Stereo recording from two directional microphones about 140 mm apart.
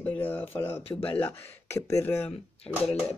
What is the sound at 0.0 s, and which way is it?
Speech, 15° left (ahead or behind).